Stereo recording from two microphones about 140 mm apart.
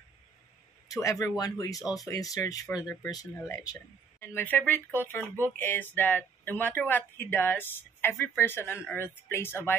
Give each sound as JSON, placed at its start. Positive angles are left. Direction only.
{"t": 0.8, "sound": "speech", "side_deg": 25}